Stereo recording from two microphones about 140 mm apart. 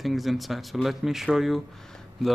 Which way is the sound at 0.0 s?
Centre (ahead or behind).